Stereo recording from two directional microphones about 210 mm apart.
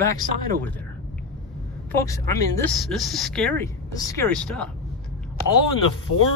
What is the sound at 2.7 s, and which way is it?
Speech, centre (ahead or behind).